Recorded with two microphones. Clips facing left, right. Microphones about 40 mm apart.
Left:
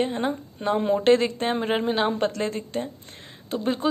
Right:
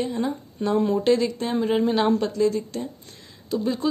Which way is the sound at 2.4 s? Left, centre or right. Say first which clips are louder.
Right 5 dB; left.